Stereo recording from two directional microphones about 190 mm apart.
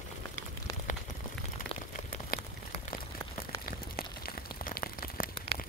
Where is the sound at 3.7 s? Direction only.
50° left (ahead or behind).